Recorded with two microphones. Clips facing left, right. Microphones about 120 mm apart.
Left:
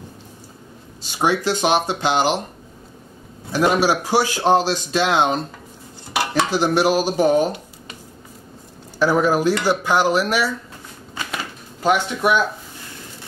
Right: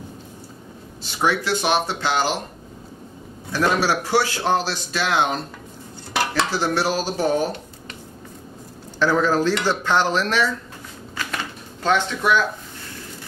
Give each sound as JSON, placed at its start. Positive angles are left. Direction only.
{"t": 1.2, "sound": "a man's voice", "side_deg": 20}
{"t": 3.5, "sound": "a man's voice", "side_deg": 15}
{"t": 9.0, "sound": "a man's voice", "side_deg": 15}
{"t": 11.1, "sound": "typewriter", "side_deg": 10}